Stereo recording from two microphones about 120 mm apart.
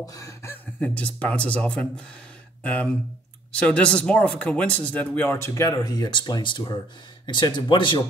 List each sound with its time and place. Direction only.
0.0 s speech: 30° left (ahead or behind)
5.5 s speech: 25° left (ahead or behind); by 8.0 s 40° left (ahead or behind)